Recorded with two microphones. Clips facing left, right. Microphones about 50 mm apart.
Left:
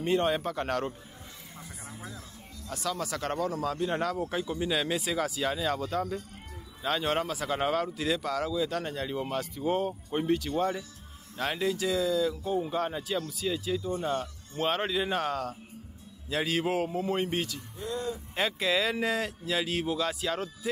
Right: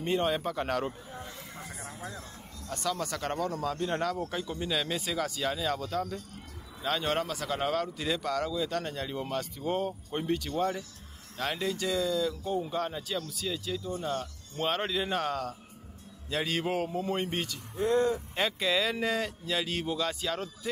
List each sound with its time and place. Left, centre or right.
0.0 s a man's voice: centre
2.7 s a man's voice: centre
14.6 s a man's voice: centre
17.7 s speech: right
18.3 s a man's voice: centre